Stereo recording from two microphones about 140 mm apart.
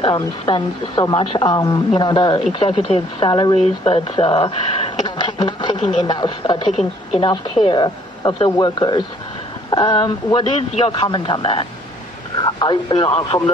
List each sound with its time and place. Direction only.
0.0 s speech: 35° left (ahead or behind)
3.5 s speech: 45° left (ahead or behind)
6.7 s a woman's voice: centre (ahead or behind)
7.7 s speech: 35° left (ahead or behind)